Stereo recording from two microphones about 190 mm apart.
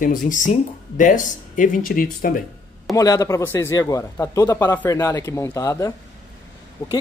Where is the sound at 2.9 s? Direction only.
15° left (ahead or behind).